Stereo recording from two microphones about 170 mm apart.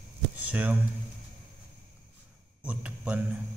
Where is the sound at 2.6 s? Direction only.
5° right (ahead or behind).